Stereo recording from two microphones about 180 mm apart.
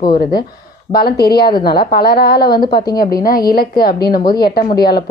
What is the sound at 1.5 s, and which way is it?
Speech, 25° left (ahead or behind).